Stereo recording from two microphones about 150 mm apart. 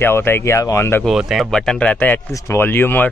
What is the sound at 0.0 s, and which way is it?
Speech, 15° left (ahead or behind).